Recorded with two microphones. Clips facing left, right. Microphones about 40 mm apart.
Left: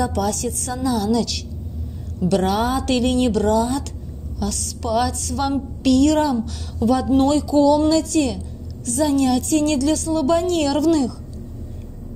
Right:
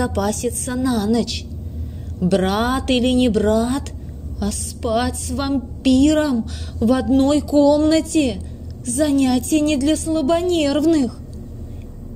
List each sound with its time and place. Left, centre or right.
0.0 s a woman's voice: right
2.3 s a woman's voice: right
4.4 s a woman's voice: right
6.8 s speech: right
7.2 s a woman's voice: right
9.1 s speech: right
9.5 s a woman's voice: right